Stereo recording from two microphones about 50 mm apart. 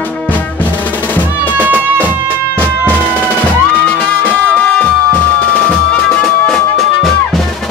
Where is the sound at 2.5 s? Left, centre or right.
Left.